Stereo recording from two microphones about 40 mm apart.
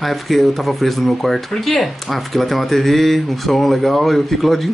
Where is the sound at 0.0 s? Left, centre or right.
Centre.